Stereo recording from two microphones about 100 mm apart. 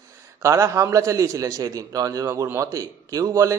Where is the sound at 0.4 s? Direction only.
30° right (ahead or behind).